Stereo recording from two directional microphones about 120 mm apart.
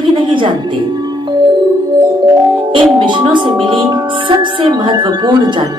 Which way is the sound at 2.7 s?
45° right (ahead or behind).